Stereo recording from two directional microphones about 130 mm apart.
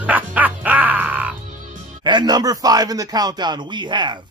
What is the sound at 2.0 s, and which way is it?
Speech, 35° right (ahead or behind).